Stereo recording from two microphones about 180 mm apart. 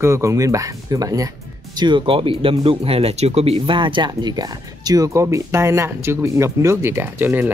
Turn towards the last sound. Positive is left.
turn(degrees=-10)  # may be behind; listen again after turning